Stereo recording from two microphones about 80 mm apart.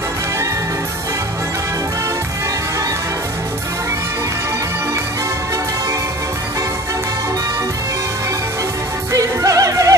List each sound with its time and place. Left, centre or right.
9.1 s music: right